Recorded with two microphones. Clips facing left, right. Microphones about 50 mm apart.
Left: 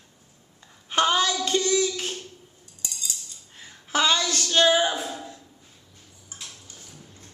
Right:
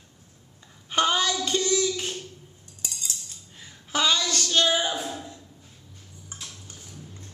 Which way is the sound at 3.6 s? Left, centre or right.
Centre.